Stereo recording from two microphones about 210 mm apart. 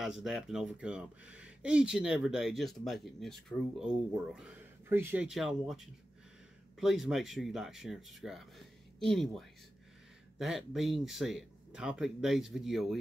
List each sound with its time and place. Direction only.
0.0 s speech: centre (ahead or behind)